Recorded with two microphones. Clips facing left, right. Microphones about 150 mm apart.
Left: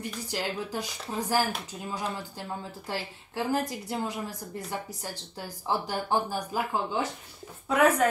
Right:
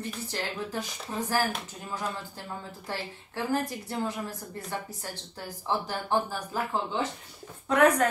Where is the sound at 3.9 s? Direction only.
15° left (ahead or behind).